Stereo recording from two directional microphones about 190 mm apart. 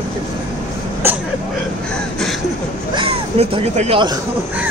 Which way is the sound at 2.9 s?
30° right (ahead or behind).